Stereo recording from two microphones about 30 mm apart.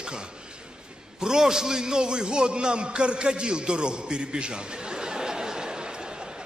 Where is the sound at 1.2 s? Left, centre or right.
Right.